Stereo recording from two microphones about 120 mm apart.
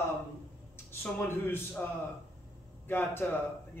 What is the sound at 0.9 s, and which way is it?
Speech, 20° left (ahead or behind).